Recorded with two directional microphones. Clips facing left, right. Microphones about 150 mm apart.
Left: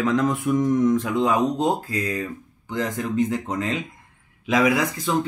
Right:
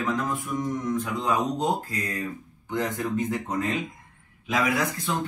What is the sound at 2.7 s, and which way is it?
Speech, 90° left.